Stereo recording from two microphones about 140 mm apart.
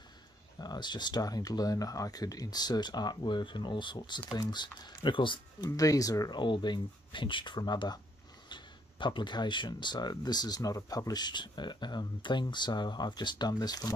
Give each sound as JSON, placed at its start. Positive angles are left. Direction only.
{"t": 0.6, "sound": "speech", "side_deg": 30}
{"t": 5.7, "sound": "speech", "side_deg": 25}